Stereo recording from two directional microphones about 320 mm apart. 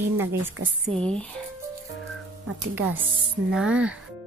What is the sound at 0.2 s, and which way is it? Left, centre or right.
Music, centre.